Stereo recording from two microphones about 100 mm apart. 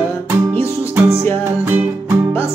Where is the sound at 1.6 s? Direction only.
20° right (ahead or behind).